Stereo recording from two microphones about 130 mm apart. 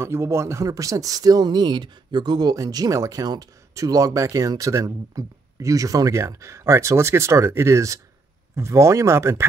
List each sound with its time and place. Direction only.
0.0 s speech: 20° right (ahead or behind)